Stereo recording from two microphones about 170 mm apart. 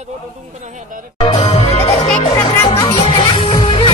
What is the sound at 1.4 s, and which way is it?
Music, 35° left (ahead or behind).